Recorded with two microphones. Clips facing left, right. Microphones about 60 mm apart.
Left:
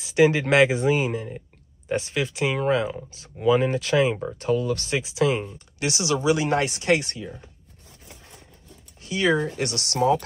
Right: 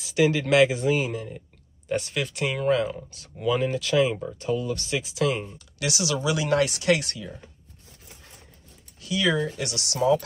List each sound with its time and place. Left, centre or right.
0.0 s speech: left
1.9 s speech: centre; by 4.2 s left
4.4 s speech: left
5.0 s speech: centre
5.8 s speech: left
9.0 s speech: left